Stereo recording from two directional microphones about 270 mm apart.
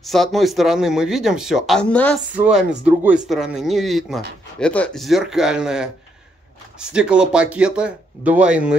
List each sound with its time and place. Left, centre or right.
0.0 s speech: centre